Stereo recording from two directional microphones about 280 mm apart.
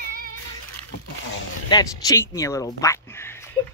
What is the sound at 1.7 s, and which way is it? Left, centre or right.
Speech, centre.